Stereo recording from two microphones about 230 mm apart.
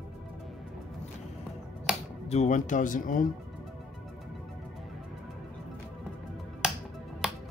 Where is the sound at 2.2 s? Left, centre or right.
Left.